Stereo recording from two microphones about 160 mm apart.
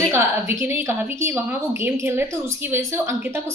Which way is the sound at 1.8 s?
15° right (ahead or behind).